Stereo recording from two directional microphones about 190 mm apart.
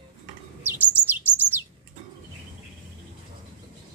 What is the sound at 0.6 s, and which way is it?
Chirp, 10° right (ahead or behind).